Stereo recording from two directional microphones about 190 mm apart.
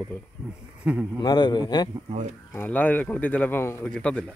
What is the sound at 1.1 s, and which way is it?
Speech, 25° left (ahead or behind).